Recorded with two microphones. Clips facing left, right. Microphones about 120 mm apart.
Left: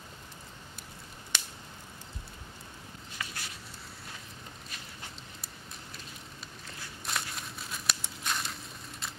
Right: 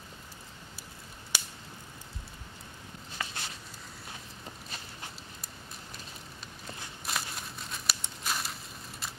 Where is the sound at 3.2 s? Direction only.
30° right (ahead or behind).